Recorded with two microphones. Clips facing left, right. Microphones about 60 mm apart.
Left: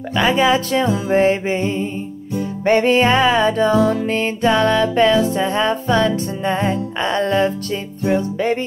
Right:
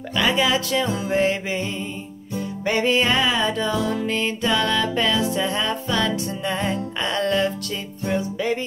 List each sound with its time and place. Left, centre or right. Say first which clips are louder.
0.1 s music: left 5 dB; left
2.4 s music: left 7 dB; left
8.0 s music: left 6 dB; left